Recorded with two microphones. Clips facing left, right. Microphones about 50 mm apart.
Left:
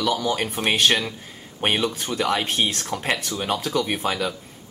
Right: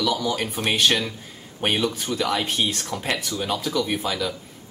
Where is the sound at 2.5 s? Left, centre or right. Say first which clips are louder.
Left 1 dB; left.